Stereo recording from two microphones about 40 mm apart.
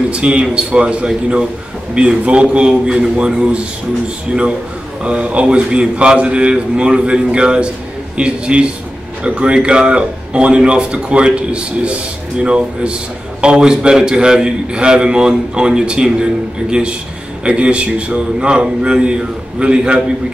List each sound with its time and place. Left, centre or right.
0.1 s a man's voice: right
17.5 s a man's voice: right